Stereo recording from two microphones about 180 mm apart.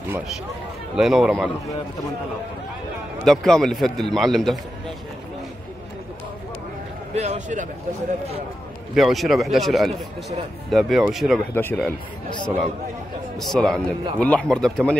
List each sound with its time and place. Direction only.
0.9 s a man's voice: centre (ahead or behind)
3.3 s a man's voice: centre (ahead or behind)
7.2 s a man's voice: 40° right (ahead or behind)
8.9 s a man's voice: centre (ahead or behind)